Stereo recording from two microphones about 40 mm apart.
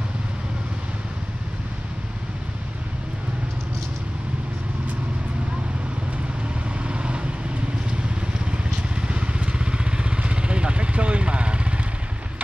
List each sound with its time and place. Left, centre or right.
6.9 s vehicle: right
8.5 s vehicle: right